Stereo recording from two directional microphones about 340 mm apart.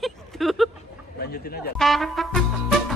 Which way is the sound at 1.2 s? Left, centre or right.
Left.